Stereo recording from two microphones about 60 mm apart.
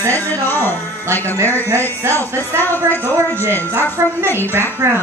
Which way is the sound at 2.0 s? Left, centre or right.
Right.